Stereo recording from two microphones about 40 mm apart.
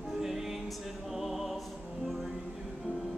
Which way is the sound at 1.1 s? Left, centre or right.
Centre.